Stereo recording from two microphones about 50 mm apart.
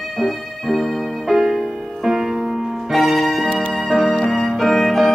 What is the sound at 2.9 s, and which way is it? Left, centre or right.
Music, centre.